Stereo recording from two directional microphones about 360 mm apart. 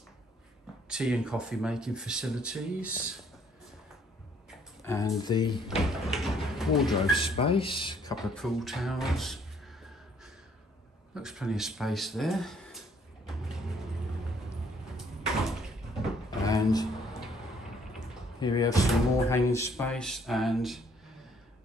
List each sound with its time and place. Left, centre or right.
0.8 s speech: centre
4.5 s speech: centre
6.0 s speech: centre
6.9 s speech: centre
8.5 s speech: centre
11.1 s speech: centre
13.3 s vehicle: centre
16.4 s a sound: centre
18.4 s speech: centre